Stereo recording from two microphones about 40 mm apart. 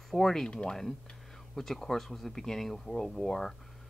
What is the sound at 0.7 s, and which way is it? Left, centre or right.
Speech, centre.